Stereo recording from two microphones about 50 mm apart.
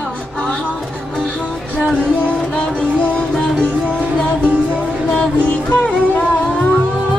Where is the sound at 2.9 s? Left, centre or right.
Left.